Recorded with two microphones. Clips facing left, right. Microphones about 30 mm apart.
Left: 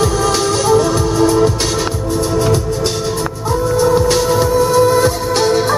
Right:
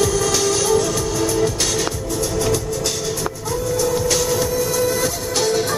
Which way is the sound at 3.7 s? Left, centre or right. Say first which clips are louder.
Left 7 dB; left.